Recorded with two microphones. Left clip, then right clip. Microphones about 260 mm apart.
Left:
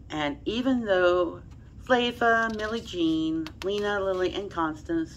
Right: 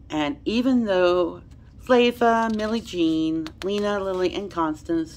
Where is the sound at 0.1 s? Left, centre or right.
Right.